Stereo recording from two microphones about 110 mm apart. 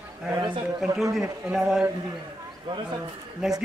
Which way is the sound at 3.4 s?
Centre (ahead or behind).